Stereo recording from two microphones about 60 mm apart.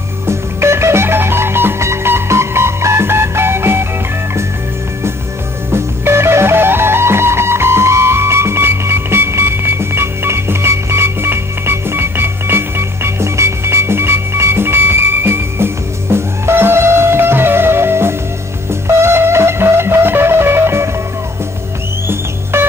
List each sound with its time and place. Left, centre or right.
0.3 s music: right
5.7 s music: right
22.0 s music: right